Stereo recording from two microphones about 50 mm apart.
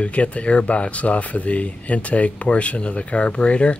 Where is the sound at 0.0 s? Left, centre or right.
Left.